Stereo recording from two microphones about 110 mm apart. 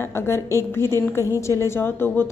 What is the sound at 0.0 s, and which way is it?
A woman's voice, 25° left (ahead or behind).